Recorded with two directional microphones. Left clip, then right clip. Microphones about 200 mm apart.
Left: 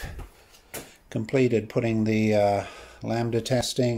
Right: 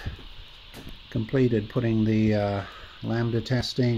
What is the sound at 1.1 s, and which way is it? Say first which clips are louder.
Speech: left 2 dB; centre (ahead or behind).